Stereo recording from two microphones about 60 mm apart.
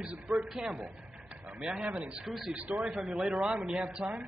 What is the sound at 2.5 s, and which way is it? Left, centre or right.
A man's voice, centre.